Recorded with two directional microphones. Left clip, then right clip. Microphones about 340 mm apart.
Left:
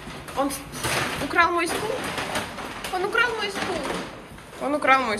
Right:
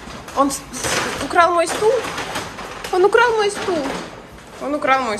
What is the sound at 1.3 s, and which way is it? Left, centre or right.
Speech, centre.